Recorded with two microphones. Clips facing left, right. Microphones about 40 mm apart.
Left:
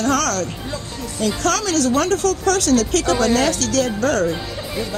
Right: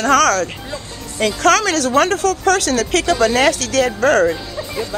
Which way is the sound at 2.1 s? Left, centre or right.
Right.